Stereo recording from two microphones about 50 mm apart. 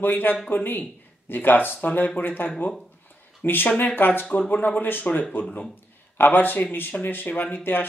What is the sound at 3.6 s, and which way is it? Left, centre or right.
Speech, left.